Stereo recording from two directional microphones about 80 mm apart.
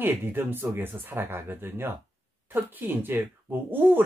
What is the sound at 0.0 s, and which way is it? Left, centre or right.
Speech, right.